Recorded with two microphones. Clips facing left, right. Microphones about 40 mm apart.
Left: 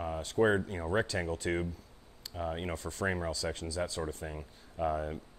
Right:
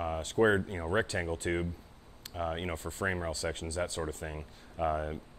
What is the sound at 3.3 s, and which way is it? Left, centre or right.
Speech, right.